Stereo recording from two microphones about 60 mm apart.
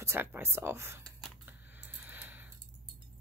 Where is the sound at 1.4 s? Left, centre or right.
Right.